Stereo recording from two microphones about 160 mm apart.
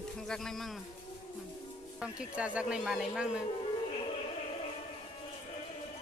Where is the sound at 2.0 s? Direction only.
5° right (ahead or behind).